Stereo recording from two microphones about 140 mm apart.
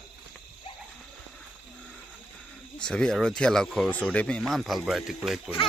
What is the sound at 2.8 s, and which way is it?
Speech, 5° left (ahead or behind).